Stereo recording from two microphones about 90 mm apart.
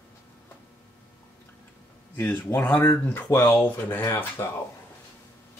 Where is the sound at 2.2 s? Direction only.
20° left (ahead or behind).